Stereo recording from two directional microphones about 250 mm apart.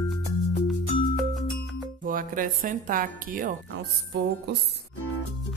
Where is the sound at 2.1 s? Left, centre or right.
Right.